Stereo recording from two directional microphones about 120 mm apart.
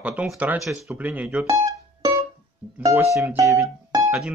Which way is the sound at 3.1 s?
25° right (ahead or behind).